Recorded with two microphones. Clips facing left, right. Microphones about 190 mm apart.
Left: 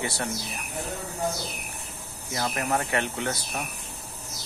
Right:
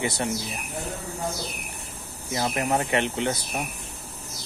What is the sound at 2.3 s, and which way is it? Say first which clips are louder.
Speech: right 3 dB; 20° right (ahead or behind).